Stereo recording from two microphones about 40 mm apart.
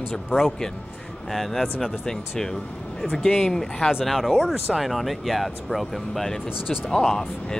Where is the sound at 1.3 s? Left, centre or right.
Centre.